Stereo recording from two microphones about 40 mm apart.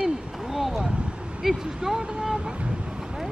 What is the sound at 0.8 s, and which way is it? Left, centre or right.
Speech, right.